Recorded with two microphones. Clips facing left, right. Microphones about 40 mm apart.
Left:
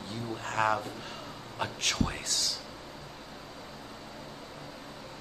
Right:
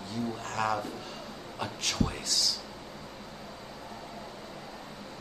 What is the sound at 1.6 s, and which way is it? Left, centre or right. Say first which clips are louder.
Speech: left 1 dB; left.